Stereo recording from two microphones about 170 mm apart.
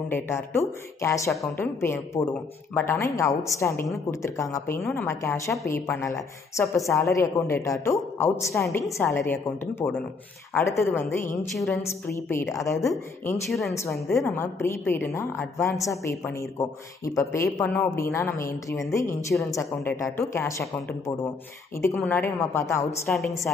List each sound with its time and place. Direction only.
0.1 s a woman's voice: 15° left (ahead or behind)
13.5 s a woman's voice: centre (ahead or behind)
14.2 s a woman's voice: 15° left (ahead or behind)
21.8 s a woman's voice: 15° left (ahead or behind)
23.0 s a woman's voice: centre (ahead or behind)